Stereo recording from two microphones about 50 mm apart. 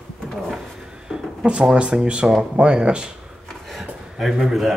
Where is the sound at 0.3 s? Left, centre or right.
Centre.